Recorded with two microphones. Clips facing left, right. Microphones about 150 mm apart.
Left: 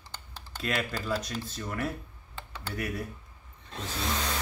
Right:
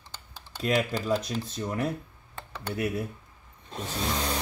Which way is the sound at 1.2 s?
Centre (ahead or behind).